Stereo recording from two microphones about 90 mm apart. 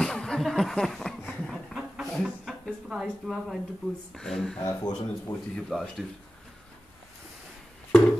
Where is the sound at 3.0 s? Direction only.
Centre (ahead or behind).